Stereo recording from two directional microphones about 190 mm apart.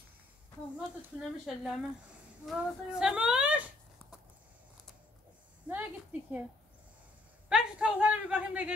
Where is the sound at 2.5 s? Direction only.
5° right (ahead or behind).